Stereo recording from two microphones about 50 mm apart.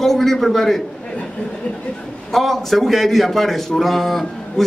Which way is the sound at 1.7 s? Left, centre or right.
Left.